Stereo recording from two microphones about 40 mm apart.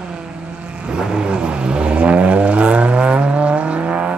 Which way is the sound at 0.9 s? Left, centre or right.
Right.